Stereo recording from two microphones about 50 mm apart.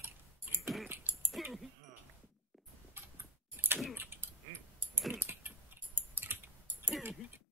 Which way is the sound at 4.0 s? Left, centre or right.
Right.